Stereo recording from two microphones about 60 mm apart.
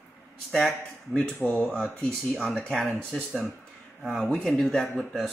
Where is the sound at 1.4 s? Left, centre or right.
Left.